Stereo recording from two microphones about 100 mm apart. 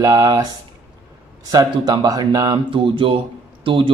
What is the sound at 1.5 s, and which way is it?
A man's voice, 40° right (ahead or behind).